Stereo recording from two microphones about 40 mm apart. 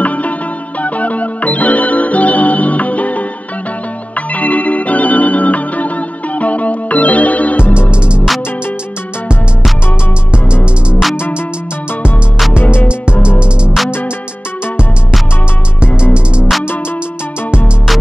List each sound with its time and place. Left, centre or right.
0.0 s music: left
4.3 s music: left
10.3 s music: right
13.2 s music: right
16.0 s music: right